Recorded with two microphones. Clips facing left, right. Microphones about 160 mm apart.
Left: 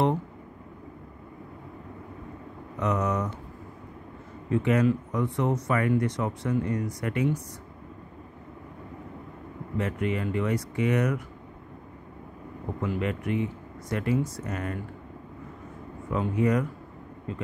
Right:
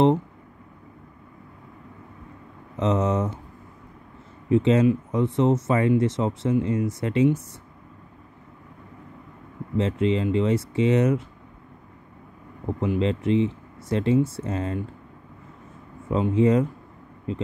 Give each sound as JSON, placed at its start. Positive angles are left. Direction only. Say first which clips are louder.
{"t": 2.8, "sound": "speech", "louder": "right 4 dB", "side_deg": -25}
{"t": 4.5, "sound": "speech", "louder": "right 5 dB", "side_deg": -25}
{"t": 9.8, "sound": "speech", "louder": "right 6 dB", "side_deg": -25}
{"t": 12.8, "sound": "speech", "louder": "right 6 dB", "side_deg": -25}
{"t": 16.1, "sound": "speech", "louder": "right 5 dB", "side_deg": -20}